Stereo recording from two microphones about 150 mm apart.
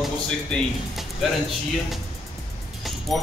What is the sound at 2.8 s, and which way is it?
Music, centre (ahead or behind).